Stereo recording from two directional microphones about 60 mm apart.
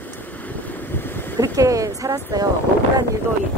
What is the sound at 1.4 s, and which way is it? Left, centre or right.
Speech, right.